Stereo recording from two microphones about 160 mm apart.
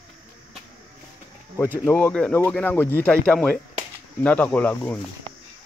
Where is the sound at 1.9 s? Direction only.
10° left (ahead or behind).